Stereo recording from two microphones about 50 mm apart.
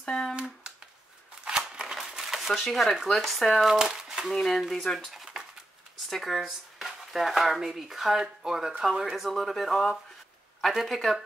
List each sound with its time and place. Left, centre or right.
0.0 s hands: centre
1.4 s a sound: centre
3.7 s speech: centre
4.3 s speech: centre